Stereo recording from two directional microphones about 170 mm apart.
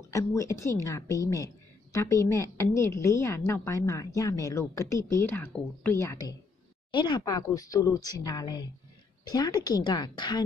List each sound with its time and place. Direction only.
0.1 s a woman's voice: 20° left (ahead or behind)
6.9 s speech: 25° left (ahead or behind)